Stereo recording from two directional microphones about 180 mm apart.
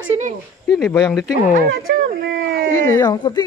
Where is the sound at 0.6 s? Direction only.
Centre (ahead or behind).